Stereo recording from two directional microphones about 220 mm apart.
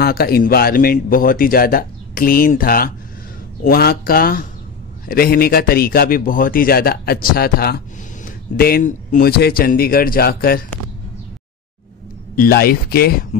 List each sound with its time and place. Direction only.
0.0 s a man's voice: 45° left (ahead or behind)
12.4 s a man's voice: 45° left (ahead or behind)